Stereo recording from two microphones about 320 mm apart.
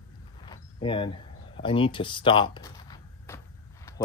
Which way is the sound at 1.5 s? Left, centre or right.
Centre.